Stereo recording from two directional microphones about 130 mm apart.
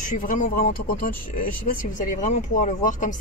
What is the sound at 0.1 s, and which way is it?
Speech, 90° left.